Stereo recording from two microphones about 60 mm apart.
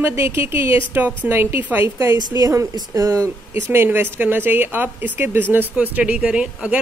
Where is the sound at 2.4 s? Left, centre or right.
Right.